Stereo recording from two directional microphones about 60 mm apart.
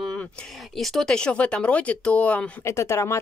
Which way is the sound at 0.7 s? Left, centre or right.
Centre.